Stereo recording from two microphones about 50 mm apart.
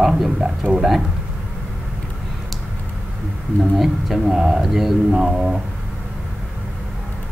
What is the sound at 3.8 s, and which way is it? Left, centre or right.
Speech, centre.